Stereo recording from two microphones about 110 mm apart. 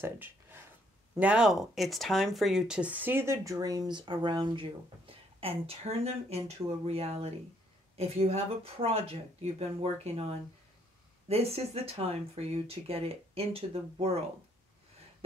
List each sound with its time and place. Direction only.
0.0 s speech: 20° right (ahead or behind)
1.2 s speech: 10° right (ahead or behind); by 14.1 s 60° right (ahead or behind)